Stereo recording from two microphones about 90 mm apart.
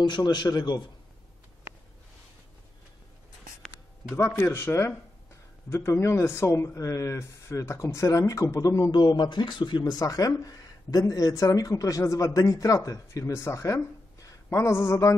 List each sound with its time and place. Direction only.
0.0 s a man's voice: 55° left (ahead or behind)
4.0 s a man's voice: 35° left (ahead or behind)
8.9 s a man's voice: 60° left (ahead or behind)
9.9 s a man's voice: 40° left (ahead or behind)